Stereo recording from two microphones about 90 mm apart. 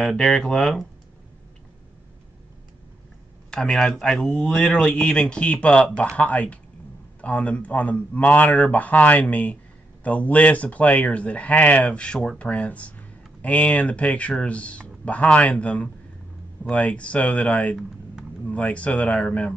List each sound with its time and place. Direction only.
0.0 s speech: 5° left (ahead or behind)
3.4 s speech: 10° left (ahead or behind)